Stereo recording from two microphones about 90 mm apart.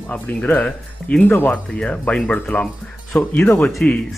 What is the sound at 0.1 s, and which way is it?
Speech, 15° left (ahead or behind).